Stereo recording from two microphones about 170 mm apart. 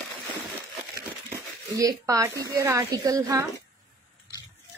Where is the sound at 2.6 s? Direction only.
15° right (ahead or behind).